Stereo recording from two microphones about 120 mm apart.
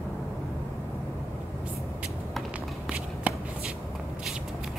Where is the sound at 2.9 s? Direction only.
10° right (ahead or behind).